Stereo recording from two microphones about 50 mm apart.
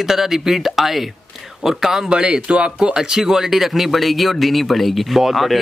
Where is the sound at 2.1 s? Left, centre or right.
Centre.